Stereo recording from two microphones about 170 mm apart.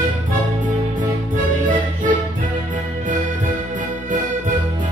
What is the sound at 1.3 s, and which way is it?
Music, 50° right (ahead or behind).